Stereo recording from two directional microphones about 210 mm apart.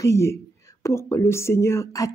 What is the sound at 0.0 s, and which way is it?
Speech, 15° left (ahead or behind).